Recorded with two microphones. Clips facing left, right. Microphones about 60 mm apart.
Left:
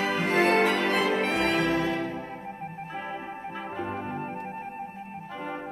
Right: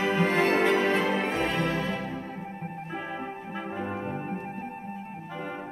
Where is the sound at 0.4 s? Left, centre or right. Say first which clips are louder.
Left 3 dB; left.